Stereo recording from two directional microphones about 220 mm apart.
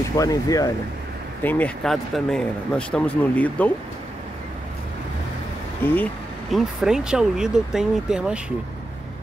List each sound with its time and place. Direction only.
0.2 s speech: 15° left (ahead or behind)
5.8 s speech: 10° left (ahead or behind)
6.5 s speech: centre (ahead or behind)